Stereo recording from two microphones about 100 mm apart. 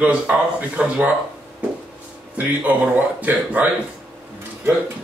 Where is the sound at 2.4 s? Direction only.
15° right (ahead or behind).